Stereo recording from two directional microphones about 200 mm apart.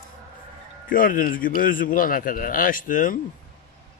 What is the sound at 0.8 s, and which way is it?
Speech, 45° left (ahead or behind).